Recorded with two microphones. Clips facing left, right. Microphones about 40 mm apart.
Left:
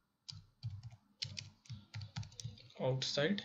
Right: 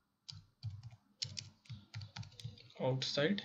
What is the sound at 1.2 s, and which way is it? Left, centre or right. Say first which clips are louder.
Typing: even; centre.